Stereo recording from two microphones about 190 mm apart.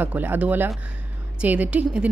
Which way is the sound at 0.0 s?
10° right (ahead or behind).